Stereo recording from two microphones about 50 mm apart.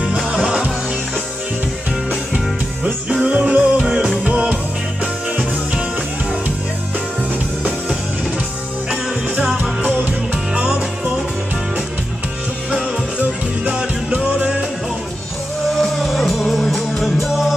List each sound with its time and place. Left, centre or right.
0.3 s music: centre
2.3 s music: centre
10.0 s music: right
14.1 s music: right
15.7 s music: centre